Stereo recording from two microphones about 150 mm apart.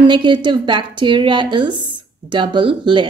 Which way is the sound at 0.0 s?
30° right (ahead or behind).